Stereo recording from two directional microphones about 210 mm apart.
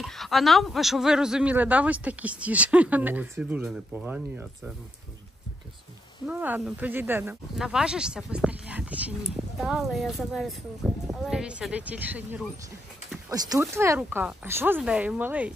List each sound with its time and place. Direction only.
0.0 s a man's voice: centre (ahead or behind)
6.2 s a man's voice: 5° right (ahead or behind)